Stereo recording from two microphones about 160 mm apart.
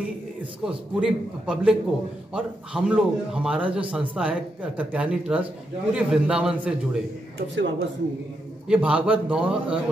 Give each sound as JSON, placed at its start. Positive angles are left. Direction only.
{"t": 0.4, "sound": "a man's voice", "side_deg": -5}
{"t": 7.3, "sound": "a man's voice", "side_deg": -90}
{"t": 8.6, "sound": "a man's voice", "side_deg": -5}